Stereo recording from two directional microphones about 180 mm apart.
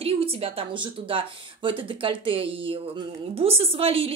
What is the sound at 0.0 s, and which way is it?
A woman's voice, 30° right (ahead or behind).